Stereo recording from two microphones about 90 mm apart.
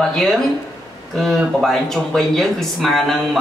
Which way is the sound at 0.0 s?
5° left (ahead or behind).